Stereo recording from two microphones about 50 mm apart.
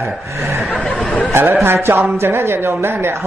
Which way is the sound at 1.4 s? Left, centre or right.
Right.